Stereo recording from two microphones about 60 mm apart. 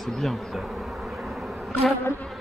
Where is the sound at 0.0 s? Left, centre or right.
Centre.